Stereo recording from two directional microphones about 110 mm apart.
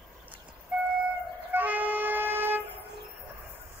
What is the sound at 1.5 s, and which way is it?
Music, 15° right (ahead or behind).